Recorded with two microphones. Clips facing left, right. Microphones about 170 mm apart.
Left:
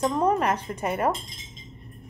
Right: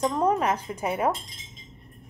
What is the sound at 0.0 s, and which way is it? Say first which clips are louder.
A woman's voice: left 1 dB; centre (ahead or behind).